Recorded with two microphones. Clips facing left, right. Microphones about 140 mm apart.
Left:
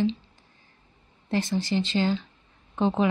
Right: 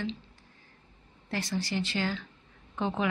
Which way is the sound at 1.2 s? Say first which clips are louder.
Left 6 dB; 20° left (ahead or behind).